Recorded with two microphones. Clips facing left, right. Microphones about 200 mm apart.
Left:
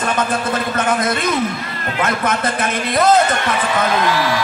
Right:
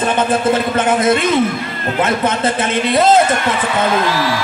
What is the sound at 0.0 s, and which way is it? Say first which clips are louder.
A man's voice: right 4 dB; 25° right (ahead or behind).